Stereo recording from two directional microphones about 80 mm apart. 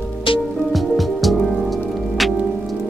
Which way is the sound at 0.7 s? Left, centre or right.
Centre.